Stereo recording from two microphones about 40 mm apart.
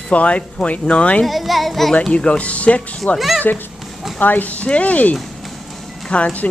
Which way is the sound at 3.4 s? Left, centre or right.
Left.